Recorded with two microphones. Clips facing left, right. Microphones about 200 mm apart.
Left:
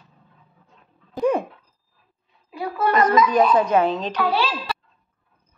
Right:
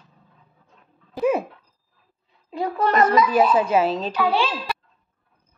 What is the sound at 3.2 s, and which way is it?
A child's voice, 5° right (ahead or behind).